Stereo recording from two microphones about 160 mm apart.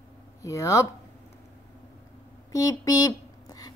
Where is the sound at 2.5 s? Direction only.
20° left (ahead or behind).